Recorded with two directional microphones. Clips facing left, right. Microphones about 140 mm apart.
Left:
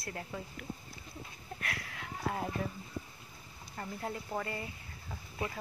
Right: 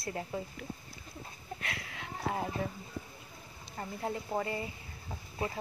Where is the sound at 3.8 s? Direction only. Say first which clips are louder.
Right 3 dB; 10° right (ahead or behind).